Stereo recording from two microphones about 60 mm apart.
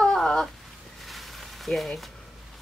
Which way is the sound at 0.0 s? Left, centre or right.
Centre.